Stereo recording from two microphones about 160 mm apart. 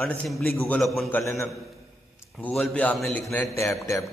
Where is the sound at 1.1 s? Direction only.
15° left (ahead or behind).